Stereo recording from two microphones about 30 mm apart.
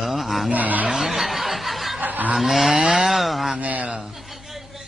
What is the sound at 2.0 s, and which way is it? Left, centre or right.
Fowl, right.